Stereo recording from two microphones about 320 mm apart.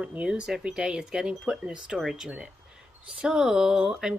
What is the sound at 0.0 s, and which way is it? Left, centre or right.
Speech, centre.